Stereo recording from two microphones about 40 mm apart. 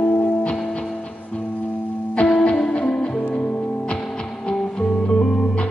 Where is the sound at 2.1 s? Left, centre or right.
Left.